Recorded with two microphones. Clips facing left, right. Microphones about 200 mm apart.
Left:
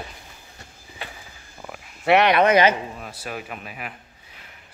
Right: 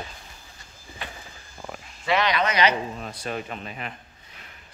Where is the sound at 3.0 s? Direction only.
5° left (ahead or behind).